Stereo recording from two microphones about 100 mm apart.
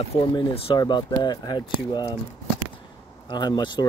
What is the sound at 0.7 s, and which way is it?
Speech, 50° left (ahead or behind).